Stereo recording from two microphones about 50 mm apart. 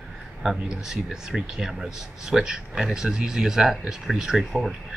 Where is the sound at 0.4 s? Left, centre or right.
Centre.